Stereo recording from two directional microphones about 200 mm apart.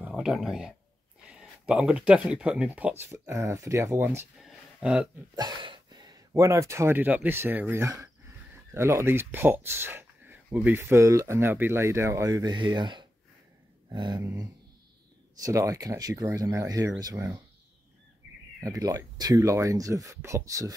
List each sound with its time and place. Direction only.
0.0 s speech: centre (ahead or behind)
5.3 s speech: 20° right (ahead or behind)
18.6 s speech: 15° right (ahead or behind)